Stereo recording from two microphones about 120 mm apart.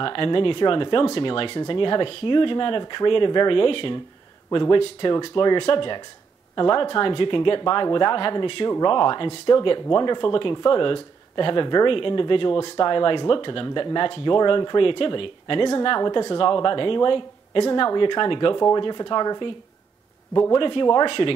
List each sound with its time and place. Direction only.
0.0 s speech: 45° left (ahead or behind)
20.5 s speech: 40° left (ahead or behind)